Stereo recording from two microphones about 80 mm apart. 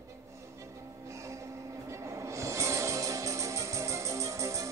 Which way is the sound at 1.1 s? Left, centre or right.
Right.